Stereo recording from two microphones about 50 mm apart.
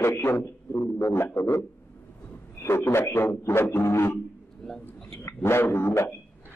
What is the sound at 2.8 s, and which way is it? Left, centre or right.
A man's voice, left.